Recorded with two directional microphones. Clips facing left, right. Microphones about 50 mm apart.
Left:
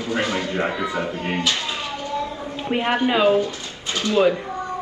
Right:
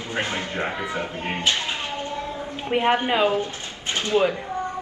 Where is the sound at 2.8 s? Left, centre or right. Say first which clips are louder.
Left 2 dB; right.